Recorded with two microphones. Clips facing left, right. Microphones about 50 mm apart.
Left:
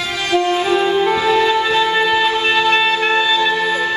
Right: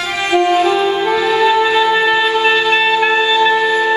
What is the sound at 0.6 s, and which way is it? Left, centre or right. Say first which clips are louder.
Music: right 2 dB; centre.